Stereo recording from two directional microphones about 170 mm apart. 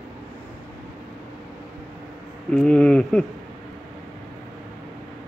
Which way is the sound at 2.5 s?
5° left (ahead or behind).